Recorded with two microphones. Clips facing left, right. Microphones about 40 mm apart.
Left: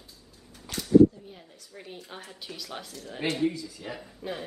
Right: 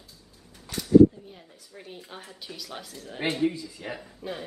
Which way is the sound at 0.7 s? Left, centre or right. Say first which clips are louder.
Right 1 dB; left.